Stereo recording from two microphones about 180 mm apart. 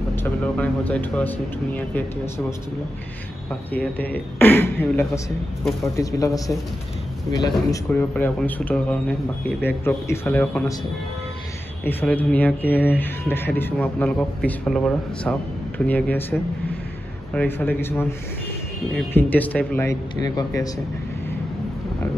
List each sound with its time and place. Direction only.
0.1 s speech: 10° left (ahead or behind)
3.7 s speech: 10° left (ahead or behind)
11.8 s speech: 10° left (ahead or behind)
19.1 s speech: 10° left (ahead or behind)